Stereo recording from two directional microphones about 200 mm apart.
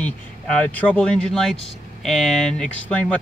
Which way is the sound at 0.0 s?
5° left (ahead or behind).